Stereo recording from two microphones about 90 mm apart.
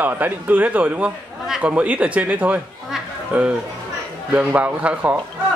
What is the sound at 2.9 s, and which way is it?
Music, 5° right (ahead or behind).